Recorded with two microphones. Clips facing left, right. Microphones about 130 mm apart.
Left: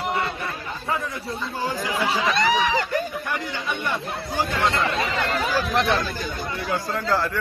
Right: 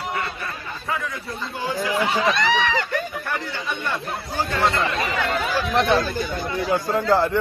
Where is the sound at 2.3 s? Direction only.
40° left (ahead or behind).